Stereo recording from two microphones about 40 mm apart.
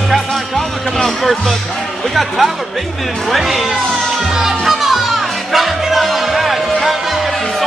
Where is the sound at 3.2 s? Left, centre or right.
Centre.